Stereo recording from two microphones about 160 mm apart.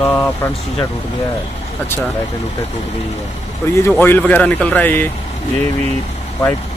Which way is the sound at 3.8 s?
15° left (ahead or behind).